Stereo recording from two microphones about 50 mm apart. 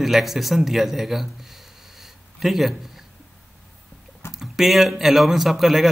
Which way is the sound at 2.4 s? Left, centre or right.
Centre.